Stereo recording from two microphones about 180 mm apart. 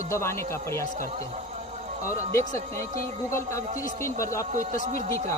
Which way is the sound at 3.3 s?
15° left (ahead or behind).